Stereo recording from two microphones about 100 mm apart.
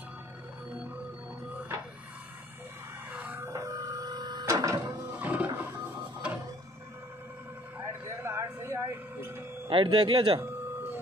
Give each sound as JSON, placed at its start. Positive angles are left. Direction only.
{"t": 3.1, "sound": "vehicle", "side_deg": -20}
{"t": 4.6, "sound": "printer", "side_deg": -35}
{"t": 5.1, "sound": "roaring cats", "side_deg": -15}
{"t": 5.5, "sound": "a sound", "side_deg": -25}
{"t": 7.8, "sound": "a sound", "side_deg": -25}
{"t": 9.7, "sound": "speech", "side_deg": -60}